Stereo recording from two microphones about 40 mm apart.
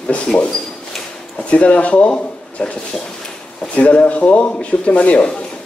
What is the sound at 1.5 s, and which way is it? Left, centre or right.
Speech, left.